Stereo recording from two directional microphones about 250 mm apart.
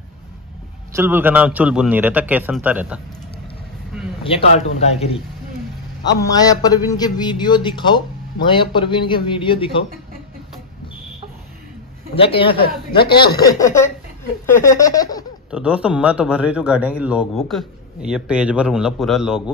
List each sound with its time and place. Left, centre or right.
0.9 s a man's voice: centre
4.2 s speech: left
6.0 s a sound: centre
7.0 s speech: centre
12.2 s speech: left
13.2 s a sound: centre
15.5 s a man's voice: centre